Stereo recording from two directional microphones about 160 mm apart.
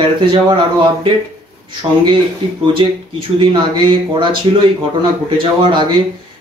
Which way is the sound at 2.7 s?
30° right (ahead or behind).